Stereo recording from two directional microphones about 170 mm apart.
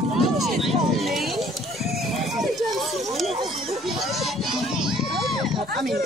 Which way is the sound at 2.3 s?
Centre (ahead or behind).